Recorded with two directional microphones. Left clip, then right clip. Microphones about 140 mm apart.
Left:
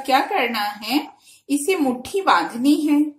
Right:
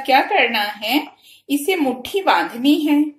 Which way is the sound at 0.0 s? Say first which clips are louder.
Right 4 dB; 50° left (ahead or behind).